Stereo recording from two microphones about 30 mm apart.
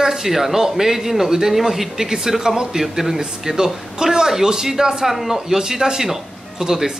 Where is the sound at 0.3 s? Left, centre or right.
Centre.